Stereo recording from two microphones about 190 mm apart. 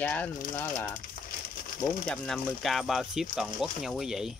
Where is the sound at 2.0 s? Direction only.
5° left (ahead or behind).